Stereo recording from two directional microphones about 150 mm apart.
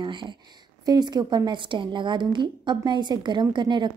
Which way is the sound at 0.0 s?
30° right (ahead or behind).